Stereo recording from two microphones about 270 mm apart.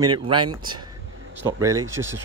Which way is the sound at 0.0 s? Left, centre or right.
Centre.